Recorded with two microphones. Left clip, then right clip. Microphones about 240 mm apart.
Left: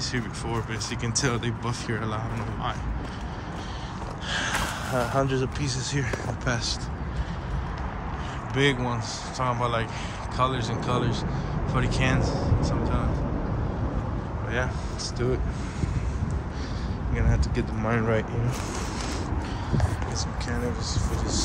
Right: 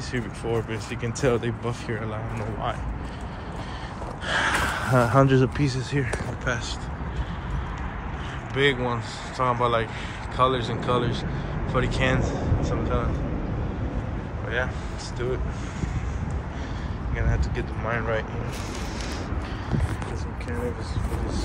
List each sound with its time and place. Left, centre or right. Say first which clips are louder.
1.0 s speech: right 4 dB; centre
4.3 s a sound: right 5 dB; right
8.5 s speech: right 2 dB; centre
17.2 s speech: even; left